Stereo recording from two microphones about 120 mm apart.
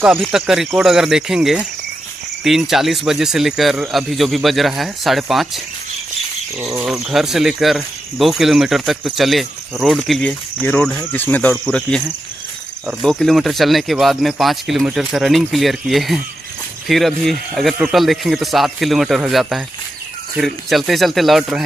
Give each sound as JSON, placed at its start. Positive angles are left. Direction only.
{"t": 0.2, "sound": "speech", "side_deg": -5}
{"t": 6.9, "sound": "speech", "side_deg": -5}
{"t": 10.6, "sound": "speech", "side_deg": 10}
{"t": 11.5, "sound": "speech", "side_deg": 0}
{"t": 13.0, "sound": "speech", "side_deg": 5}